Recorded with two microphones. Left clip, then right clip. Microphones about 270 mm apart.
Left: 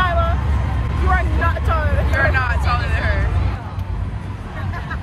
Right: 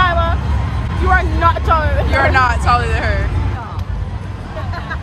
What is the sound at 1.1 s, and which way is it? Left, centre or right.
Vehicle, right.